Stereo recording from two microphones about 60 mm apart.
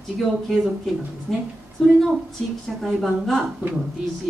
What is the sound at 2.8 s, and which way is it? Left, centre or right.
Speech, centre.